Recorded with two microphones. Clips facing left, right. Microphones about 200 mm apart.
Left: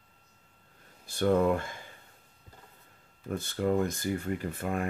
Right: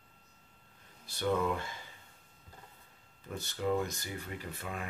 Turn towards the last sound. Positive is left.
turn(degrees=50)  # may be behind; listen again after turning